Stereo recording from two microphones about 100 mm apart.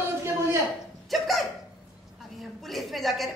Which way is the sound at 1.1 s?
Centre (ahead or behind).